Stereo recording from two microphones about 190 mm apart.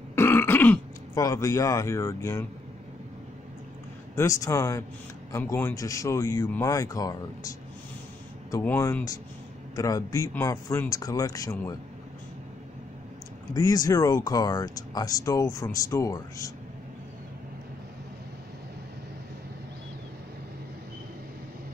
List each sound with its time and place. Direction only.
0.1 s throat clearing: 10° left (ahead or behind)
4.1 s speech: 15° left (ahead or behind)
13.5 s speech: 20° left (ahead or behind)